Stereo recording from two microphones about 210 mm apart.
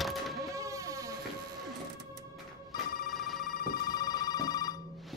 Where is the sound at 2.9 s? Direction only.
45° left (ahead or behind).